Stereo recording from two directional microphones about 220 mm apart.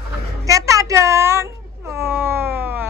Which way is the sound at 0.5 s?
15° right (ahead or behind).